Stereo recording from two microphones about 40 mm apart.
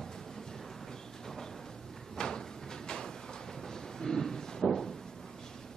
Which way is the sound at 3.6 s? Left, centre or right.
Centre.